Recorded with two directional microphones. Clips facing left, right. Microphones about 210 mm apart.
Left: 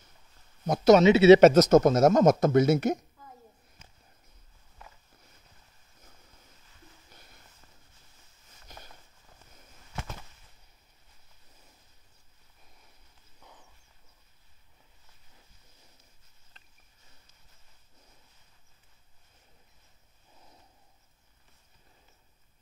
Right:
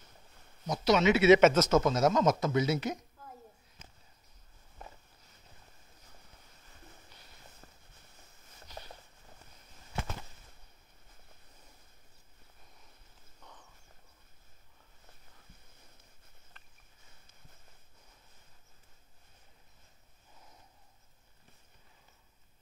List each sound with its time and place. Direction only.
0.7 s speech: 45° left (ahead or behind)
1.0 s speech: 30° left (ahead or behind); by 3.0 s 50° left (ahead or behind)
8.7 s a sound: 50° left (ahead or behind)
13.4 s horse: 5° left (ahead or behind)